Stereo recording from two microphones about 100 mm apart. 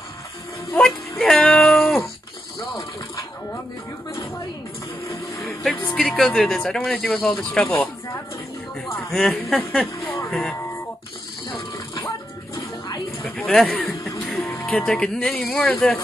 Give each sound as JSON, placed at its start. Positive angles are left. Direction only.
{"t": 0.7, "sound": "a sound", "side_deg": 10}
{"t": 5.9, "sound": "speech", "side_deg": 10}
{"t": 9.1, "sound": "speech", "side_deg": 5}
{"t": 12.5, "sound": "music", "side_deg": 40}
{"t": 13.2, "sound": "a sound", "side_deg": 15}
{"t": 13.6, "sound": "speech", "side_deg": 15}
{"t": 14.6, "sound": "music", "side_deg": 20}
{"t": 14.9, "sound": "speech", "side_deg": 10}